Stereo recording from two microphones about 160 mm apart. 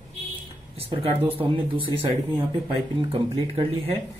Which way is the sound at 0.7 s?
40° right (ahead or behind).